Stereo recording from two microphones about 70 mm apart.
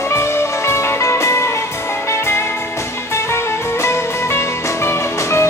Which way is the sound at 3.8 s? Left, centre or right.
Left.